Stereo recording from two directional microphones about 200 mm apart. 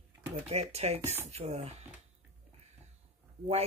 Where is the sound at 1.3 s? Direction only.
30° right (ahead or behind).